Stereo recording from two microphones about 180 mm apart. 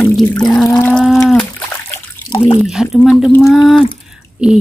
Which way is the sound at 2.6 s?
Centre (ahead or behind).